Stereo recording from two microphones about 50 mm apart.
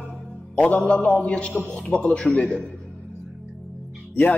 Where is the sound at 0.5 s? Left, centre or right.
Left.